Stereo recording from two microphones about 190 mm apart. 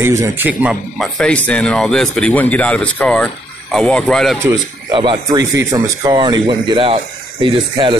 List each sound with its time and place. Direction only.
0.0 s speech: 15° right (ahead or behind); by 4.4 s centre (ahead or behind)
4.9 s speech: 25° right (ahead or behind)